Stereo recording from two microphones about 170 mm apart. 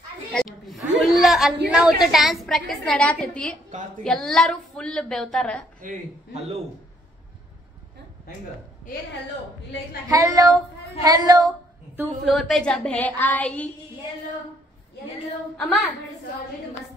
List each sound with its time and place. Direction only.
0.3 s a sound: 5° left (ahead or behind)
1.7 s a woman's voice: 5° right (ahead or behind)
5.8 s a man's voice: 45° right (ahead or behind)
10.0 s a woman's voice: 20° right (ahead or behind)
12.3 s a woman's voice: centre (ahead or behind)
15.5 s a woman's voice: centre (ahead or behind)